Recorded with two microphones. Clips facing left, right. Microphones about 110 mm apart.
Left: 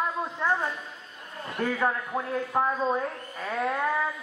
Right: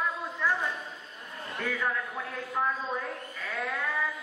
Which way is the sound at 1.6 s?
35° left (ahead or behind).